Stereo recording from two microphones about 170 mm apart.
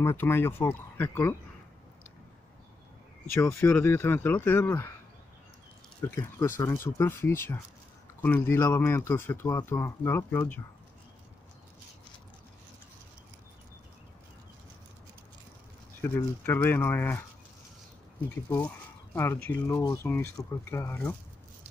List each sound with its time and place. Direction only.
0.0 s speech: 15° left (ahead or behind)
3.3 s speech: 15° left (ahead or behind)
6.0 s speech: 15° left (ahead or behind)
16.0 s speech: 10° left (ahead or behind)
18.3 s speech: 15° left (ahead or behind)